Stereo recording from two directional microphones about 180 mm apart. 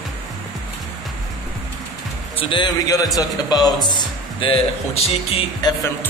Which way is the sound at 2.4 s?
25° left (ahead or behind).